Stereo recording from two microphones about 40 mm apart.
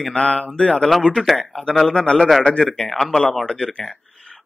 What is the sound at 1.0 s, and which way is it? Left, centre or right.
A man's voice, centre.